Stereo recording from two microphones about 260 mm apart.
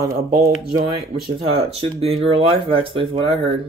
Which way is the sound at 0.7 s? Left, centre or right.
Right.